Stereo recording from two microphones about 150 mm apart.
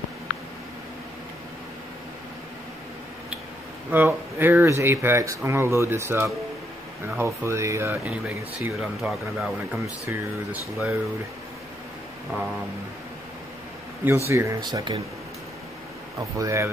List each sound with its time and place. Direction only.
3.9 s speech: 15° right (ahead or behind)
8.7 s a man's voice: centre (ahead or behind)
10.0 s speech: 10° right (ahead or behind)
14.0 s speech: 15° right (ahead or behind)
16.2 s speech: 20° right (ahead or behind)